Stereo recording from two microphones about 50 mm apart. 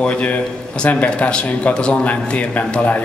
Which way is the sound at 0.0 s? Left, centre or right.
Left.